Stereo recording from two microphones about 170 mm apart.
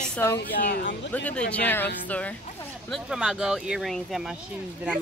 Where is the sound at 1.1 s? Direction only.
10° left (ahead or behind).